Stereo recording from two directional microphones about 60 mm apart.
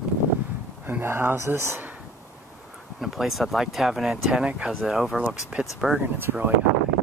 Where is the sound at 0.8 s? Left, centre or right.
Right.